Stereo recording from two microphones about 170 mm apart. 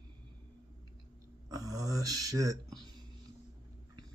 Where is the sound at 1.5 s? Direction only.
20° right (ahead or behind).